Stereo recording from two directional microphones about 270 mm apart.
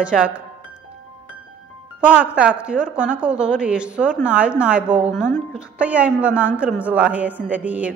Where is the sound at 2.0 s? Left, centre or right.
Centre.